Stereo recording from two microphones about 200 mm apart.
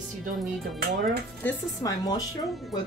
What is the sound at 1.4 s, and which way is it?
Speech, 15° left (ahead or behind).